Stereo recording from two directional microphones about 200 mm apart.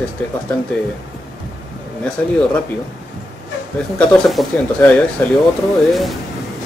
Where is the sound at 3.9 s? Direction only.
5° left (ahead or behind).